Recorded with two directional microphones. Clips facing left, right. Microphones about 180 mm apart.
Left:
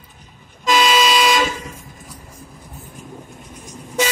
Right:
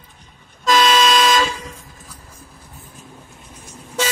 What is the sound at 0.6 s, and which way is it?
Toot, 10° left (ahead or behind).